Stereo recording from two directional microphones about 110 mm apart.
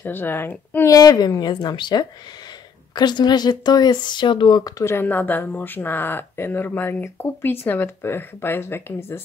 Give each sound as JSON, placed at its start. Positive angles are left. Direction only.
{"t": 0.0, "sound": "speech", "side_deg": 20}
{"t": 0.9, "sound": "speech", "side_deg": 35}
{"t": 4.8, "sound": "speech", "side_deg": 20}